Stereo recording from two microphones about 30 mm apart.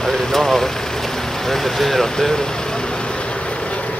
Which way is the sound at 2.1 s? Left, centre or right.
Centre.